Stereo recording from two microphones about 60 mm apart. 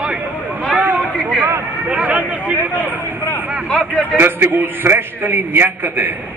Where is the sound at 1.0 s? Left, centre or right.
Centre.